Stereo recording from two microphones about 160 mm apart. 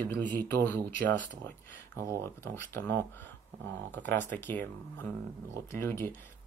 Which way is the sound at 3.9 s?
10° left (ahead or behind).